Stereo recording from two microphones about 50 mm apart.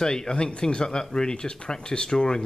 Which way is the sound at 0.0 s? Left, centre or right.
Centre.